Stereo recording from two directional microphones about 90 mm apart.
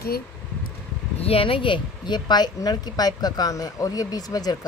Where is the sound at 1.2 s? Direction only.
90° left.